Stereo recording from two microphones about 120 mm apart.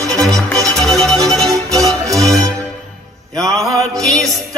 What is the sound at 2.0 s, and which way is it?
Music, 30° right (ahead or behind).